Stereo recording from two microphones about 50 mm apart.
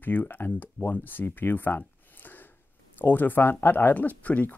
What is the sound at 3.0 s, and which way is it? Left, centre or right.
Speech, left.